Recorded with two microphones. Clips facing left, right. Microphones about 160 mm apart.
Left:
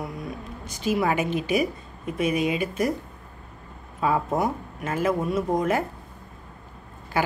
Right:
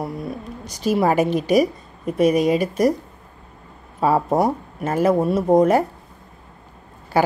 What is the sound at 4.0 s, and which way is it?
A woman's voice, 35° right (ahead or behind).